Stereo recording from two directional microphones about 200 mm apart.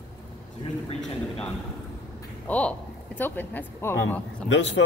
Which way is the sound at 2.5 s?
5° left (ahead or behind).